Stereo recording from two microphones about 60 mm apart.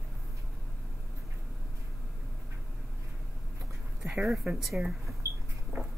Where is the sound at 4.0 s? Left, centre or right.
Right.